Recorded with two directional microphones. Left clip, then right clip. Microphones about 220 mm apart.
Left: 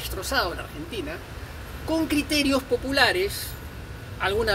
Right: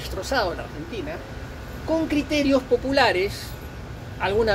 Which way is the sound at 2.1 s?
15° left (ahead or behind).